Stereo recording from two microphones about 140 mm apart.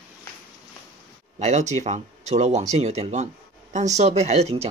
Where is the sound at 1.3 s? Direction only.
55° right (ahead or behind).